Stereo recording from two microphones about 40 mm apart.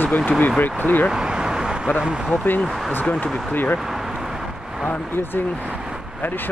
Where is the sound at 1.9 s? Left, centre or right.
Right.